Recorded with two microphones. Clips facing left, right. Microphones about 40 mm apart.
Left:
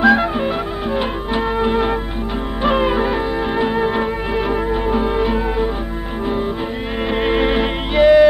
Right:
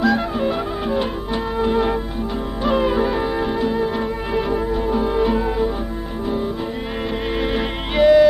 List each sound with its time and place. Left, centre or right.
0.0 s music: left
3.5 s music: left
7.2 s music: left
8.0 s music: centre